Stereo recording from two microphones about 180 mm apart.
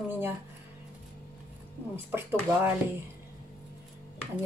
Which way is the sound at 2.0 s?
10° right (ahead or behind).